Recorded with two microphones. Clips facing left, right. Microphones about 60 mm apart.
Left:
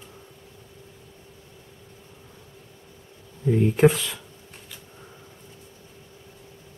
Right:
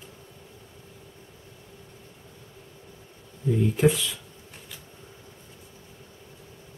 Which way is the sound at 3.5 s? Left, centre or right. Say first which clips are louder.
Left 4 dB; left.